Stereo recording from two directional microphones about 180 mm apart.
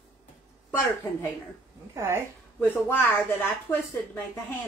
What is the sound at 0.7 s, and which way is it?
Speech, 15° left (ahead or behind).